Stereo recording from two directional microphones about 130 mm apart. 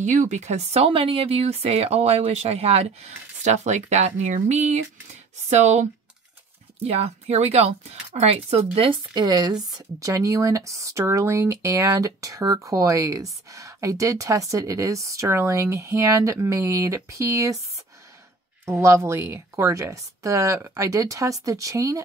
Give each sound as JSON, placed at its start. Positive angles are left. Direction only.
{"t": 0.0, "sound": "speech", "side_deg": -70}
{"t": 9.2, "sound": "speech", "side_deg": -30}
{"t": 18.7, "sound": "speech", "side_deg": -20}